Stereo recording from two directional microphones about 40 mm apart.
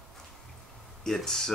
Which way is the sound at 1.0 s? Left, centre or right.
Centre.